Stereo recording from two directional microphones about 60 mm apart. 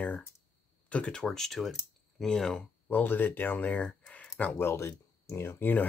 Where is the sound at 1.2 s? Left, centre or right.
Centre.